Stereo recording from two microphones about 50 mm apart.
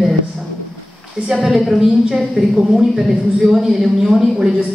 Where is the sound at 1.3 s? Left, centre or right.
Centre.